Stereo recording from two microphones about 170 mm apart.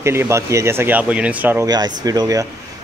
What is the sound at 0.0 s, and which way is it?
Speech, 15° right (ahead or behind).